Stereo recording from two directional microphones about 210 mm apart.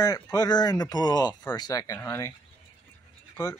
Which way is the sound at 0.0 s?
15° left (ahead or behind).